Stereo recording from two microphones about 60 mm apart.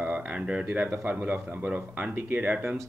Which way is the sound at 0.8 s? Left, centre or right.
Right.